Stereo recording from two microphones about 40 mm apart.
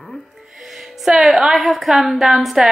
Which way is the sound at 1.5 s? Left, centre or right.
Centre.